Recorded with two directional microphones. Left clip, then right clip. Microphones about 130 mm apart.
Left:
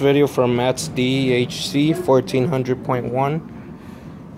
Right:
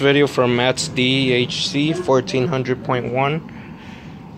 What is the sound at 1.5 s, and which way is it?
Speech, 35° left (ahead or behind).